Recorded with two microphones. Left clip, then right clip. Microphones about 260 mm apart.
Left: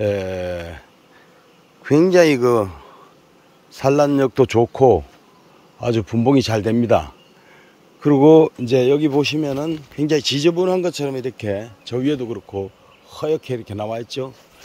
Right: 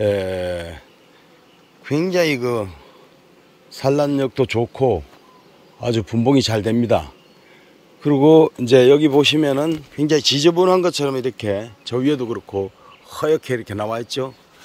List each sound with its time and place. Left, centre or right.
0.0 s a sound: centre
1.8 s a man's voice: left
5.8 s a man's voice: centre